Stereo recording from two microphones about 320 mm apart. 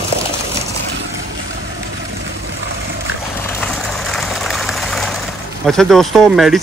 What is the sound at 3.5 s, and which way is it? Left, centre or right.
Vehicle, centre.